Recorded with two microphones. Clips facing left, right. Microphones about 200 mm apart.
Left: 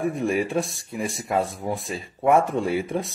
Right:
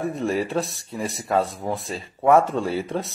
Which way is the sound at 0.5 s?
15° left (ahead or behind).